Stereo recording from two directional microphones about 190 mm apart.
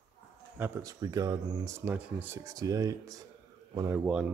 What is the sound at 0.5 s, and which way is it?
Speech, 15° right (ahead or behind).